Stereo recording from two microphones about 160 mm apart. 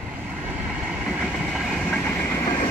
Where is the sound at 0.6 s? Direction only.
Centre (ahead or behind).